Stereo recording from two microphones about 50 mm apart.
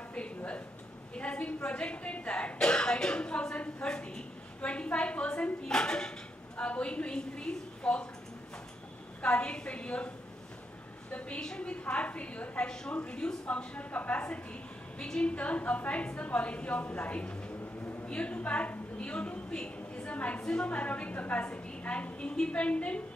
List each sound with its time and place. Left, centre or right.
1.1 s speech: left
5.7 s a sound: centre
6.7 s a woman's voice: left
9.2 s a woman's voice: left
20.4 s a woman's voice: centre
20.7 s a woman's voice: left